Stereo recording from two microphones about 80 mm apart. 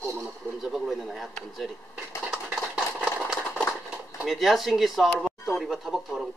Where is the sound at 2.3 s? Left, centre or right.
Centre.